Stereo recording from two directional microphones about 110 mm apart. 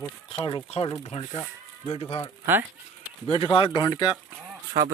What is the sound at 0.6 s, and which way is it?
Speech, 70° left (ahead or behind).